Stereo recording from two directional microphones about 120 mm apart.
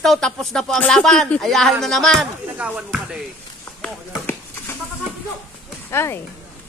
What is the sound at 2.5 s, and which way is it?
Speech, 10° right (ahead or behind).